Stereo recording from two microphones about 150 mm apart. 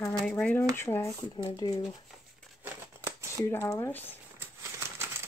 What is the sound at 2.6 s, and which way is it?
Scissors, 20° right (ahead or behind).